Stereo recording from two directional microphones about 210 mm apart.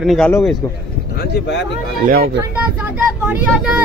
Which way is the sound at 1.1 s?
45° left (ahead or behind).